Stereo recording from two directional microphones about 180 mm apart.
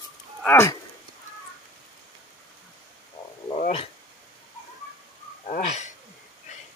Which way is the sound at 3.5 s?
35° left (ahead or behind).